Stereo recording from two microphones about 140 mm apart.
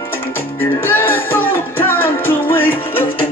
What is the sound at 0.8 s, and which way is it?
Music, 15° left (ahead or behind).